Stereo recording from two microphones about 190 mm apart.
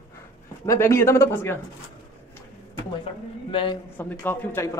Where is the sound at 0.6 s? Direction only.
15° left (ahead or behind).